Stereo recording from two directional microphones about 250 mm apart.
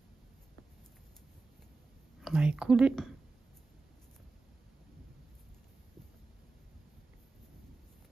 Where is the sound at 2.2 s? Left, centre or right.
Centre.